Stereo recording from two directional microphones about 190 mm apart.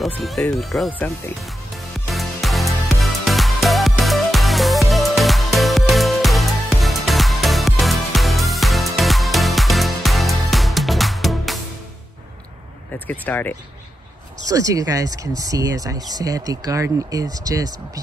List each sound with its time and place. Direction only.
0.0 s speech: centre (ahead or behind)
2.0 s music: centre (ahead or behind)
13.0 s speech: 10° left (ahead or behind)
14.4 s speech: 20° right (ahead or behind)